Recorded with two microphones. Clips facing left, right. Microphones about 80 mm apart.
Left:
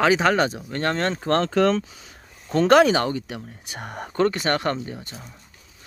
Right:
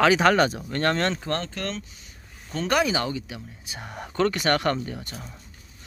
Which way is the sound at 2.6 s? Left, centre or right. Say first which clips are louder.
Left 8 dB; left.